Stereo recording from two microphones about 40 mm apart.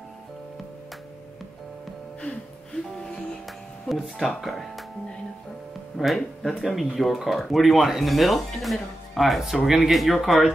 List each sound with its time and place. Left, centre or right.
2.3 s music: left
2.7 s music: centre
4.4 s speech: centre
5.9 s speech: centre